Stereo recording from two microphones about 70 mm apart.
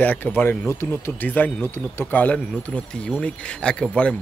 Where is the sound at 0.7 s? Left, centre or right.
Left; by 4.1 s centre.